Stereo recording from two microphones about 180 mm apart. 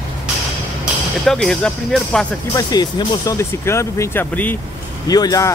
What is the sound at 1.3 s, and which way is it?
Speech, 5° left (ahead or behind).